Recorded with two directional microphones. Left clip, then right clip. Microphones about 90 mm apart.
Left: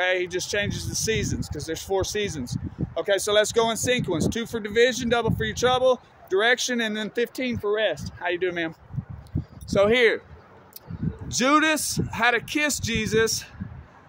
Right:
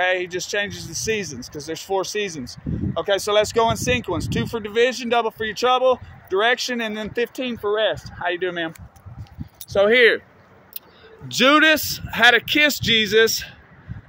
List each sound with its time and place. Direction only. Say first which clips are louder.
0.0 s speech: right 3 dB; 15° left (ahead or behind)
9.8 s speech: right 4 dB; centre (ahead or behind)
11.2 s speech: right 6 dB; 15° right (ahead or behind)